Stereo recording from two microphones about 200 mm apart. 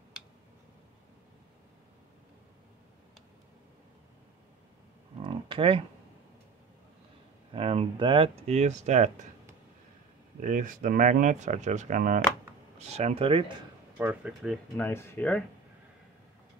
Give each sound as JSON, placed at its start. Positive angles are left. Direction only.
{"t": 5.2, "sound": "a sound", "side_deg": -25}
{"t": 7.5, "sound": "speech", "side_deg": -30}
{"t": 10.4, "sound": "speech", "side_deg": -40}
{"t": 13.9, "sound": "speech", "side_deg": -5}
{"t": 14.8, "sound": "speech", "side_deg": 10}